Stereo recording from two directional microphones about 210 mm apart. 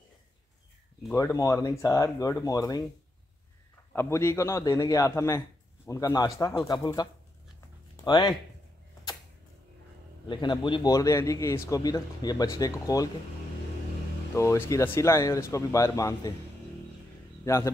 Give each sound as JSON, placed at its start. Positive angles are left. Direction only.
{"t": 1.1, "sound": "a man's voice", "side_deg": 15}
{"t": 3.9, "sound": "a man's voice", "side_deg": 10}
{"t": 10.2, "sound": "a man's voice", "side_deg": 20}
{"t": 14.3, "sound": "a man's voice", "side_deg": 15}
{"t": 17.4, "sound": "speech", "side_deg": 15}